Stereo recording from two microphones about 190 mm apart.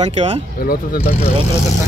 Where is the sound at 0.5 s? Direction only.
50° left (ahead or behind).